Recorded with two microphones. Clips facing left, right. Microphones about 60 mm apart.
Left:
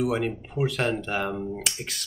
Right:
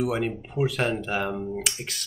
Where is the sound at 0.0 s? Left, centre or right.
Centre.